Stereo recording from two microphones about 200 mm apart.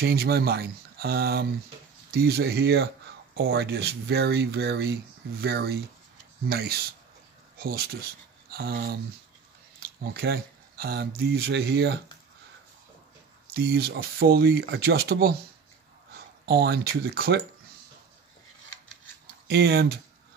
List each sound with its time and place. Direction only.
0.0 s speech: 50° right (ahead or behind)
10.1 s speech: 55° right (ahead or behind)
13.5 s speech: 50° right (ahead or behind)
16.4 s speech: 50° right (ahead or behind)
19.2 s speech: 55° right (ahead or behind)